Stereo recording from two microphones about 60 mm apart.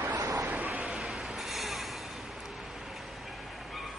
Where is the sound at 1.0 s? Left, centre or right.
Centre.